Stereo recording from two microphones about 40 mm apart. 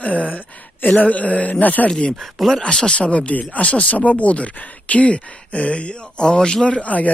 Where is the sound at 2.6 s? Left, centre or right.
Left.